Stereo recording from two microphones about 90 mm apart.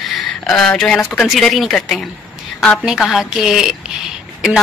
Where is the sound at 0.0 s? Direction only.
5° left (ahead or behind).